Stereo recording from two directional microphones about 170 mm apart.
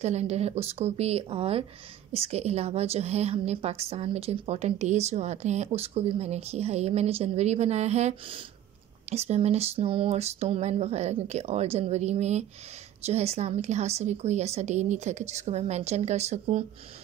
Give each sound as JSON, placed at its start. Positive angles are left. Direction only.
{"t": 0.0, "sound": "a woman's voice", "side_deg": -40}